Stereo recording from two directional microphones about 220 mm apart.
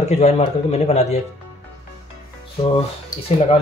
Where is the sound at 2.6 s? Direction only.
25° left (ahead or behind).